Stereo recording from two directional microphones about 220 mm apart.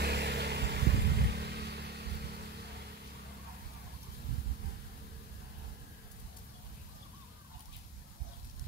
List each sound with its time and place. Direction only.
0.0 s vehicle: 50° right (ahead or behind)